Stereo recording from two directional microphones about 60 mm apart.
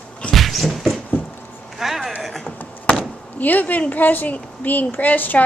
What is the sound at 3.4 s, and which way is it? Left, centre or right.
A woman's voice, left.